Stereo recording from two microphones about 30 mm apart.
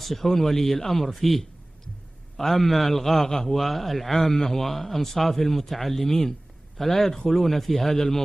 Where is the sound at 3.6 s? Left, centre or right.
Centre.